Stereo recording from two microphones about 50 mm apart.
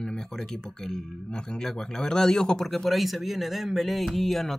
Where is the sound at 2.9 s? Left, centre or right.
Centre.